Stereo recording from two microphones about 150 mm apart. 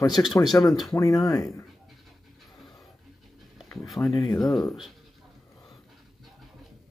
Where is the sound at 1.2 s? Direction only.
25° left (ahead or behind).